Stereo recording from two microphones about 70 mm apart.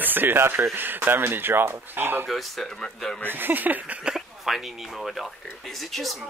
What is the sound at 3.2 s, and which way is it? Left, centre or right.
Speech, right.